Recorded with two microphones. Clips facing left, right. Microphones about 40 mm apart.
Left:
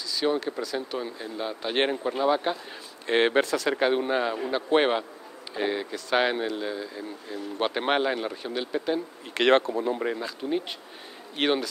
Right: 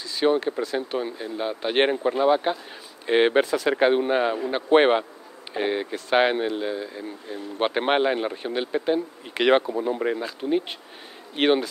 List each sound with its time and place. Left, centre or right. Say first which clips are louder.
0.1 s speech: right 5 dB; right
9.4 s speech: right 1 dB; centre